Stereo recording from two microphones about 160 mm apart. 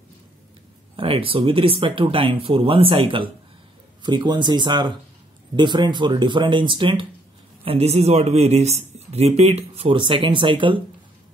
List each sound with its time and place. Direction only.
0.9 s a man's voice: 35° right (ahead or behind)
7.6 s a man's voice: 40° right (ahead or behind)